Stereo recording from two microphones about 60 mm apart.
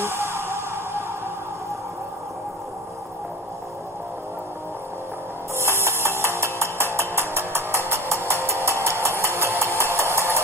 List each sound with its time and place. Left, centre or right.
0.0 s music: right
5.6 s music: right
7.0 s a sound: right